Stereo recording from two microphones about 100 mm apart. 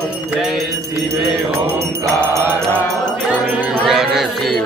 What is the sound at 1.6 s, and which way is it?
Music, 25° right (ahead or behind).